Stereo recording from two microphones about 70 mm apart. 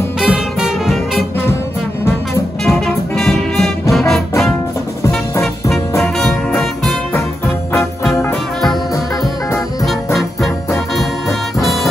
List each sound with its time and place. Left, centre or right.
0.2 s music: centre
2.6 s music: centre
6.1 s music: centre
9.8 s music: centre